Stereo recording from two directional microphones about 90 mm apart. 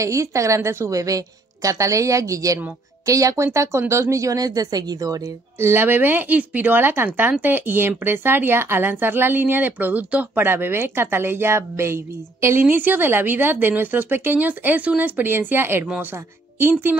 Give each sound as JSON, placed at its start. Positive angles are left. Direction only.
{"t": 0.0, "sound": "a woman's voice", "side_deg": -35}
{"t": 5.6, "sound": "a woman's voice", "side_deg": -25}